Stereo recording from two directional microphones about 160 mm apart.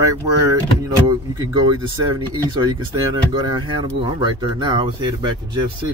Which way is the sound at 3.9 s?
30° right (ahead or behind).